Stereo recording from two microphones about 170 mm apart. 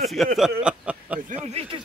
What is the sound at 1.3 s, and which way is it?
Speech, 40° right (ahead or behind).